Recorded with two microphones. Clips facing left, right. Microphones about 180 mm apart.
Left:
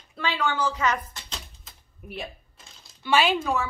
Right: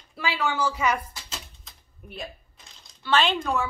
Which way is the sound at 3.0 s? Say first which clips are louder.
Left 1 dB; 10° left (ahead or behind).